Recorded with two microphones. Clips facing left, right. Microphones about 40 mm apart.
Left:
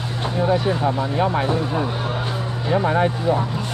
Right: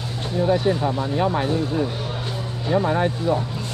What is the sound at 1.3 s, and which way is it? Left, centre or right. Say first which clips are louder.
Speech: left 1 dB; left.